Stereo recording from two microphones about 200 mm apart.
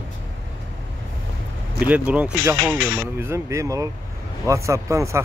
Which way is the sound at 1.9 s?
5° right (ahead or behind).